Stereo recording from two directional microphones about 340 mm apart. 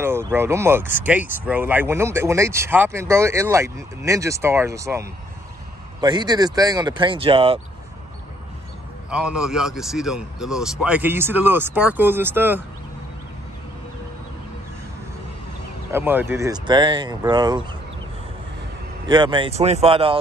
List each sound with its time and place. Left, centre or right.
0.0 s speech: centre
9.1 s a man's voice: centre
15.9 s speech: centre
19.0 s speech: centre